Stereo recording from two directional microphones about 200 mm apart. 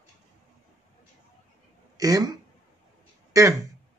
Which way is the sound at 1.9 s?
20° right (ahead or behind).